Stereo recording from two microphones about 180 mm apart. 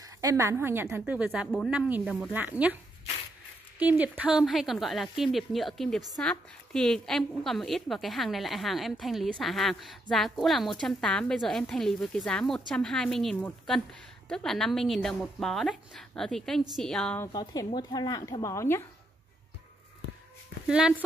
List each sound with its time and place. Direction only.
0.0 s a woman's voice: 20° right (ahead or behind)
3.8 s a woman's voice: 10° right (ahead or behind)
17.2 s a woman's voice: 20° left (ahead or behind)
20.6 s speech: 5° right (ahead or behind)